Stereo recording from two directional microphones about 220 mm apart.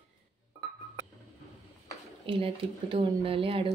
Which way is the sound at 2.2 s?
25° right (ahead or behind).